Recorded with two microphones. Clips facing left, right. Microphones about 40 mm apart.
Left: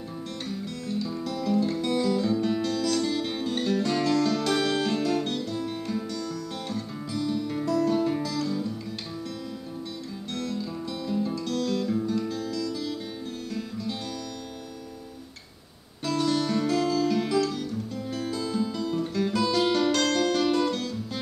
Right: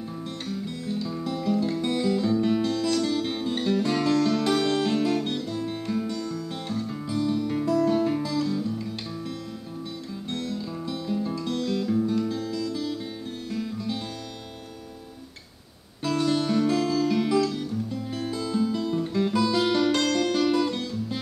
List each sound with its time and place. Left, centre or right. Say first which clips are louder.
0.8 s music: even; centre
1.5 s music: even; centre
8.5 s music: right 2 dB; centre
10.5 s music: right 1 dB; centre
16.0 s guitar: right 1 dB; right
16.3 s music: right 2 dB; centre
20.7 s music: right 1 dB; centre